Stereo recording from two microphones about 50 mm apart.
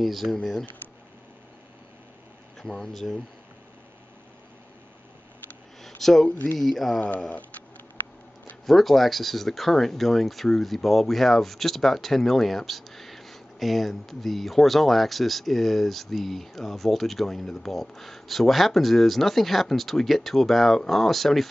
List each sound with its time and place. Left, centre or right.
0.0 s speech: centre
0.4 s speech: centre
2.6 s speech: centre
5.8 s a sound: centre
6.3 s speech: left
6.6 s speech: centre
7.0 s speech: left
8.6 s speech: centre